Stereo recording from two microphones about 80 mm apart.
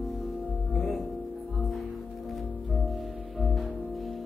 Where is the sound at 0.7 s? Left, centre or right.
Centre.